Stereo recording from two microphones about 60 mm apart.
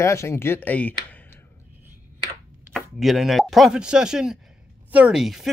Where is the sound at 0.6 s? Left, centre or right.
Left.